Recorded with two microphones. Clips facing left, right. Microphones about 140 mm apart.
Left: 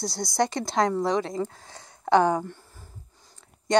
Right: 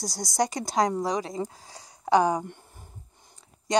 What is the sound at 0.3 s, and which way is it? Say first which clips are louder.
Speech: left 1 dB; 15° right (ahead or behind).